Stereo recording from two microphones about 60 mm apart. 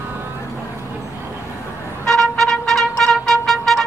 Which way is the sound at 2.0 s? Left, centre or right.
Centre.